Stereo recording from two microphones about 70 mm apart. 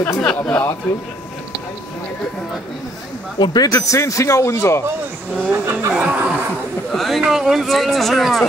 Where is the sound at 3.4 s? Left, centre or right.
Left.